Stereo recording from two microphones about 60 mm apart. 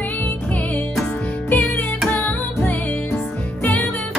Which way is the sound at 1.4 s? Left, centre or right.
Left.